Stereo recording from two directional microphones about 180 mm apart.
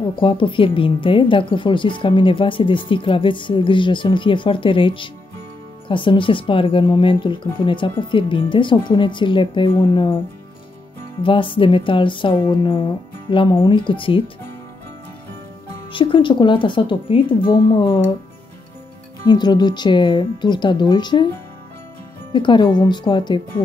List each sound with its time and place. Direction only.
0.1 s speech: 30° left (ahead or behind)
11.2 s speech: 30° left (ahead or behind)
15.9 s speech: 25° left (ahead or behind)
19.2 s speech: 25° left (ahead or behind)
22.3 s speech: 25° left (ahead or behind)